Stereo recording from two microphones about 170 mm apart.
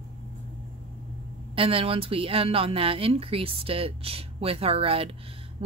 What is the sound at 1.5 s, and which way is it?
Speech, 30° right (ahead or behind).